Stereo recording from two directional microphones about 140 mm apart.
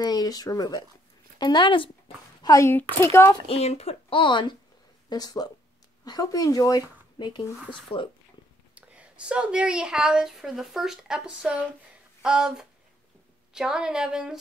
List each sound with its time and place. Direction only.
0.0 s a woman's voice: 30° left (ahead or behind)
2.4 s speech: 20° left (ahead or behind)
3.3 s a woman's voice: 45° left (ahead or behind)
8.7 s a woman's voice: 10° right (ahead or behind)
12.2 s a sound: 5° right (ahead or behind)
13.5 s a woman's voice: 5° right (ahead or behind)